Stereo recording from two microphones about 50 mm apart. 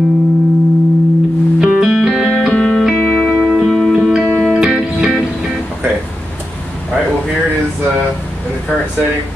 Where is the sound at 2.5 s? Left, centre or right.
Centre.